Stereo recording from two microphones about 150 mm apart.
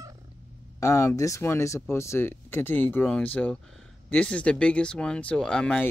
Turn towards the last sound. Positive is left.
turn(degrees=5)  # may be behind; listen again after turning